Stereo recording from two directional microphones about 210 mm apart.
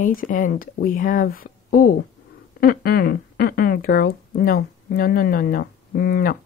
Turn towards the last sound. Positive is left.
turn(degrees=45)  # may be behind; listen again after turning